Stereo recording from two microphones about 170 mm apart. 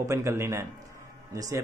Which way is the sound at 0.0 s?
15° right (ahead or behind).